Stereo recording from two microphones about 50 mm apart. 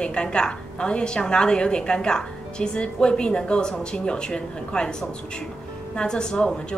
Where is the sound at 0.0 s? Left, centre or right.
Centre.